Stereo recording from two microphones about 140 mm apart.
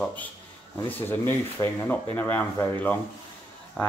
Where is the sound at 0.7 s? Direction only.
15° left (ahead or behind).